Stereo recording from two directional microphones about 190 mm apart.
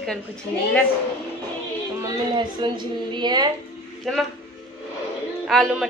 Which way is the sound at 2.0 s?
20° right (ahead or behind).